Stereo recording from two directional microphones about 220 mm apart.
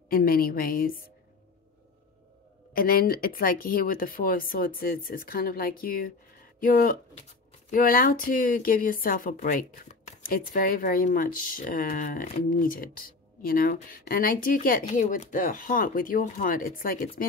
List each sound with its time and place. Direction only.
0.1 s speech: 40° left (ahead or behind)
2.7 s speech: 40° left (ahead or behind)